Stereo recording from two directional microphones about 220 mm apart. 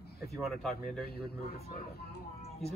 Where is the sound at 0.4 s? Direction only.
Centre (ahead or behind).